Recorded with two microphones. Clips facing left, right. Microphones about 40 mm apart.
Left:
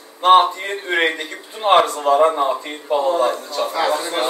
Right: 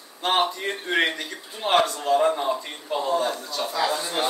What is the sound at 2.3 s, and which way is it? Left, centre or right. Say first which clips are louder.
A man's voice: left 6 dB; left.